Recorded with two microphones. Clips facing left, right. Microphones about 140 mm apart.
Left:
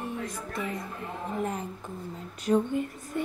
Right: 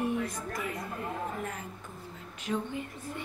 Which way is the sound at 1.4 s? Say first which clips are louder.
Left 7 dB; 35° left (ahead or behind).